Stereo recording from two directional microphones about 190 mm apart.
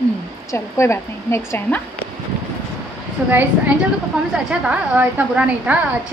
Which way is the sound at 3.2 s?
10° right (ahead or behind).